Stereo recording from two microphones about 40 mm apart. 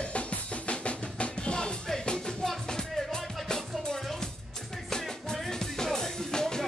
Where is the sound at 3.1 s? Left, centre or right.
Centre.